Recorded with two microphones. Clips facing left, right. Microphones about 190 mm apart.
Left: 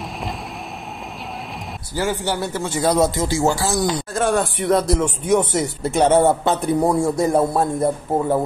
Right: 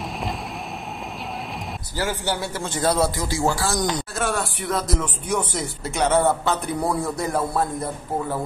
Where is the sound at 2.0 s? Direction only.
15° left (ahead or behind).